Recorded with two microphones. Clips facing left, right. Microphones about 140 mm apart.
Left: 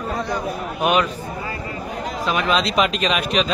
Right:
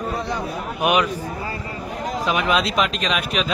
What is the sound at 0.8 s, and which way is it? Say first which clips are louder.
Speech: even; 15° right (ahead or behind).